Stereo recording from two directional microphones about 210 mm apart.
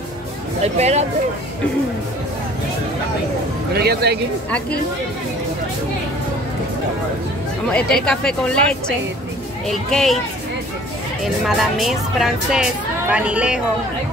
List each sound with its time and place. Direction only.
0.6 s speech: 30° right (ahead or behind)
3.7 s speech: 50° right (ahead or behind)
4.5 s speech: 5° left (ahead or behind)
7.7 s speech: 5° left (ahead or behind)
11.4 s speech: centre (ahead or behind)